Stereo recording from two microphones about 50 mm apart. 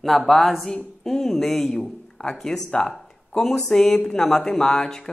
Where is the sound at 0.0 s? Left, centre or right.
Centre.